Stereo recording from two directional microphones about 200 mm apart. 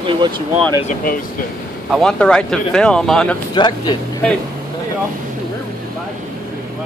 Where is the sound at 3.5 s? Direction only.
20° left (ahead or behind).